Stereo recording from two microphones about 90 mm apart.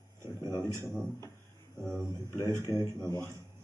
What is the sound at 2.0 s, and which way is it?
Speech, 30° right (ahead or behind).